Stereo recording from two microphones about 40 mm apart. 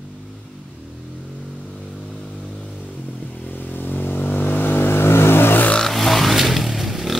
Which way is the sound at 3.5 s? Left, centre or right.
Left.